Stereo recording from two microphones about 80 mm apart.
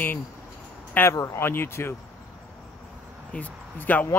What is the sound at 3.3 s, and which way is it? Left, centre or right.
Speech, centre.